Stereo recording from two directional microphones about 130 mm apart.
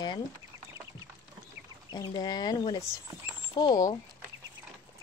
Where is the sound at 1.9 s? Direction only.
30° left (ahead or behind).